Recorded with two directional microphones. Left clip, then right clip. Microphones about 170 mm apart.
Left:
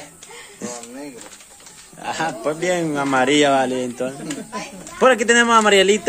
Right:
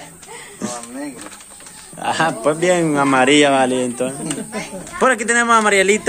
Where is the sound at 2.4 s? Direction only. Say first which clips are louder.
Right 4 dB; 10° left (ahead or behind).